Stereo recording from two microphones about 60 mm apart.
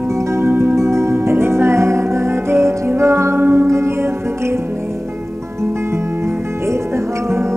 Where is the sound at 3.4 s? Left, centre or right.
Right.